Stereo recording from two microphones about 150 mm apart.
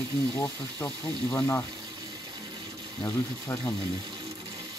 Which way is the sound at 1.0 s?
30° right (ahead or behind).